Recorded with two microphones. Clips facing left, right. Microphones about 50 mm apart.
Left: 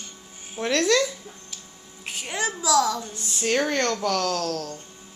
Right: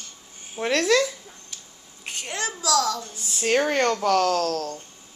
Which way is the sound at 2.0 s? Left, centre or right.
Centre.